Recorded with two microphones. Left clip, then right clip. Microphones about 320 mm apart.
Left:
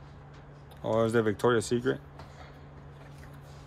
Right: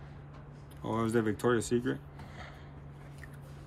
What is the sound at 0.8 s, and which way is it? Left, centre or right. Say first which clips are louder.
Speech: left 5 dB; centre.